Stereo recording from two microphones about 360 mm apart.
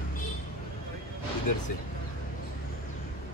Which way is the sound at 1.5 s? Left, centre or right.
Left.